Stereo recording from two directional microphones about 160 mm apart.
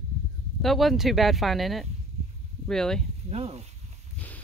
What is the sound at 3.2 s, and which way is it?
Speech, 40° right (ahead or behind).